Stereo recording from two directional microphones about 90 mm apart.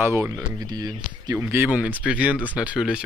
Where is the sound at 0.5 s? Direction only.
45° right (ahead or behind).